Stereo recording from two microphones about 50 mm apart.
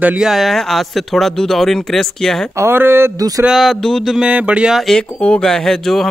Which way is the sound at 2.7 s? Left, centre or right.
Right.